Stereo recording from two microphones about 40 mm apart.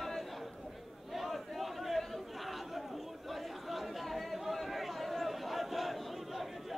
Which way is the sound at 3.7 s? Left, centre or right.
Centre.